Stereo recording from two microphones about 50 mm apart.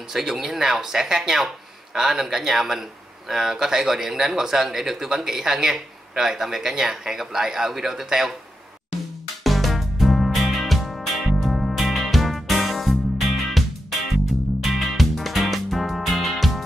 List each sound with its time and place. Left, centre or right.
0.1 s speech: centre
9.4 s music: centre